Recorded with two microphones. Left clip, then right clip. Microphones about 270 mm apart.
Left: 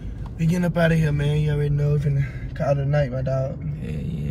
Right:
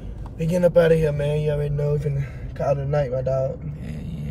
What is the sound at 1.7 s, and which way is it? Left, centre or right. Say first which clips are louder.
Speech: right 2 dB; centre.